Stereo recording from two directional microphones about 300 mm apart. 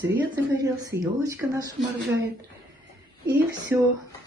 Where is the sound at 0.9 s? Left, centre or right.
Right.